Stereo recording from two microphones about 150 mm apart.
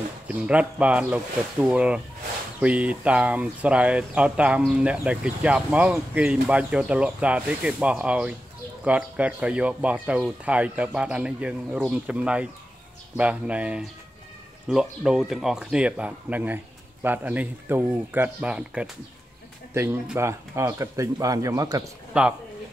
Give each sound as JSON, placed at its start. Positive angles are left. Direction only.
{"t": 0.3, "sound": "speech", "side_deg": -10}
{"t": 22.1, "sound": "speech", "side_deg": -10}